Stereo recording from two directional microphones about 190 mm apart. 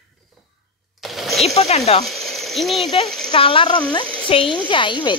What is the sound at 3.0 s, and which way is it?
Speech, 5° left (ahead or behind).